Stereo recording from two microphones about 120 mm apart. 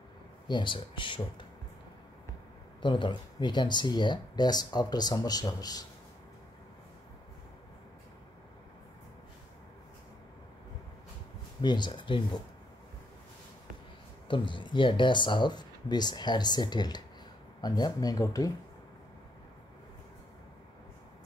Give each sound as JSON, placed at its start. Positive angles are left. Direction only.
{"t": 0.5, "sound": "speech", "side_deg": 40}
{"t": 2.8, "sound": "speech", "side_deg": 40}
{"t": 11.6, "sound": "speech", "side_deg": 40}
{"t": 14.2, "sound": "speech", "side_deg": 45}